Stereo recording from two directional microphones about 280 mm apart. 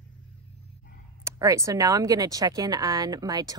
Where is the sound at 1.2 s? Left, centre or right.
Centre.